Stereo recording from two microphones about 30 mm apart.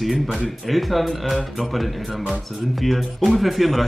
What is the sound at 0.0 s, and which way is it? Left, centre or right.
Speech, centre.